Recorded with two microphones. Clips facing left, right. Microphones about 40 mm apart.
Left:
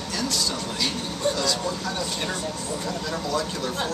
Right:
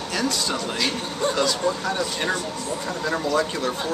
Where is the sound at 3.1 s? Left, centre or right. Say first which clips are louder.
Right 6 dB; right.